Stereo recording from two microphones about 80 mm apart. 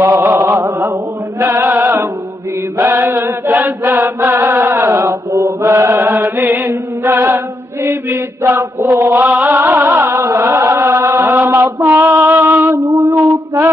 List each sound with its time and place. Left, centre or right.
0.0 s chant: right
1.4 s chant: right
2.9 s mantra: right
4.5 s music: right
5.3 s mantra: right
6.1 s mantra: right
7.0 s chant: right
9.5 s music: right
10.1 s mantra: right
10.4 s chant: right
11.2 s mantra: right
12.7 s mantra: right